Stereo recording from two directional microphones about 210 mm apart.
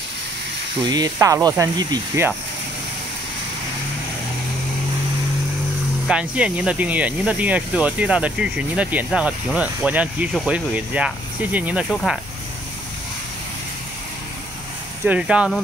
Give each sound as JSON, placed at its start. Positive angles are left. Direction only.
{"t": 0.8, "sound": "speech", "side_deg": -20}
{"t": 6.0, "sound": "speech", "side_deg": -5}
{"t": 15.0, "sound": "speech", "side_deg": -5}